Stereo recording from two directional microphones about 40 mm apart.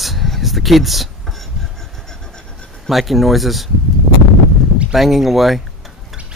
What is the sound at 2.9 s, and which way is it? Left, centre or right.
Speech, centre.